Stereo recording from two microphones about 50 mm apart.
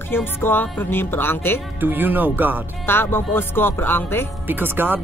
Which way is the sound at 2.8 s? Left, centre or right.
Left.